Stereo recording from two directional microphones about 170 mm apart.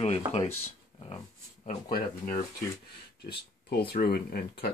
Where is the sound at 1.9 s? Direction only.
55° left (ahead or behind).